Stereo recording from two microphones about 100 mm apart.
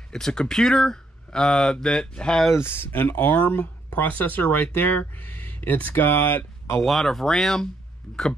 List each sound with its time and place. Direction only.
0.1 s speech: 5° left (ahead or behind)
2.5 s speech: 25° left (ahead or behind)
6.8 s speech: centre (ahead or behind)